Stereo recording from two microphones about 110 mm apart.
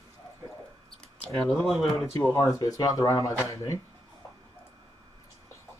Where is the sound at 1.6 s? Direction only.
Centre (ahead or behind).